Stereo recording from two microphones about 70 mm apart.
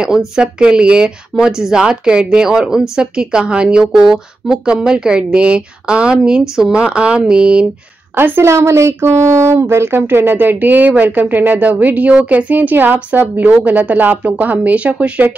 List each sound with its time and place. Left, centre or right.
0.0 s speech: centre
8.1 s speech: right